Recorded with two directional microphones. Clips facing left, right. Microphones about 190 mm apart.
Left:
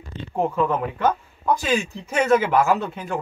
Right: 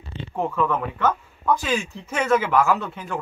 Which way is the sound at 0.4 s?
15° left (ahead or behind).